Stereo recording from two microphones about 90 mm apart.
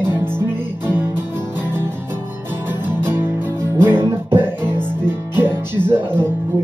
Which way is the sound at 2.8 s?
25° right (ahead or behind).